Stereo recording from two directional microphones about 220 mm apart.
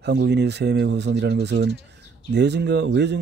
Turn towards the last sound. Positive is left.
turn(degrees=-50)  # may be behind; listen again after turning